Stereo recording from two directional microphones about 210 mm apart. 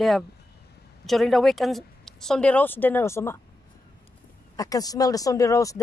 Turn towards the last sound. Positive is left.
turn(degrees=15)  # may be behind; listen again after turning